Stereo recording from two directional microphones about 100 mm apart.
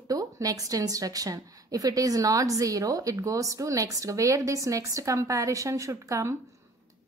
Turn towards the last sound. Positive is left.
turn(degrees=-30)  # may be behind; listen again after turning